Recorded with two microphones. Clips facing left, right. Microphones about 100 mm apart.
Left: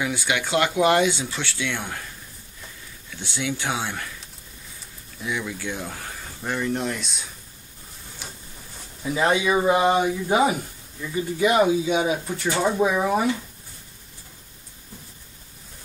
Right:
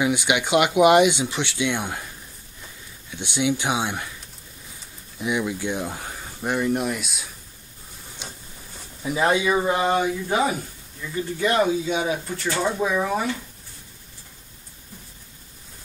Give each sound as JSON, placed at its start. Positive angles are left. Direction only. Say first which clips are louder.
{"t": 0.0, "sound": "speech", "louder": "right 4 dB", "side_deg": -20}
{"t": 3.1, "sound": "speech", "louder": "right 5 dB", "side_deg": -20}
{"t": 5.2, "sound": "speech", "louder": "right 4 dB", "side_deg": -20}
{"t": 8.2, "sound": "a sound", "louder": "right 1 dB", "side_deg": -20}
{"t": 9.0, "sound": "speech", "louder": "even", "side_deg": -5}